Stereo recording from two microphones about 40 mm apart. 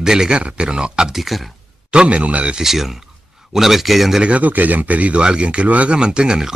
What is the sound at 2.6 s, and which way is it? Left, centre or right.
Speech, centre.